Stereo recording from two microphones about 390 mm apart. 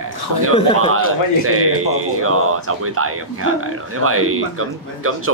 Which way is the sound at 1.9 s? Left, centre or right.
Right.